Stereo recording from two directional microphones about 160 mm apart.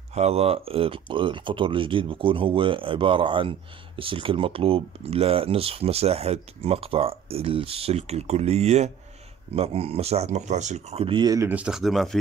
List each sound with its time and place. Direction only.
0.1 s speech: 40° right (ahead or behind)
11.4 s speech: 5° right (ahead or behind)